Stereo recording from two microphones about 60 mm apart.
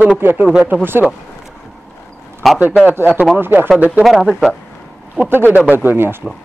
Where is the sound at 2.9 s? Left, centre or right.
Right.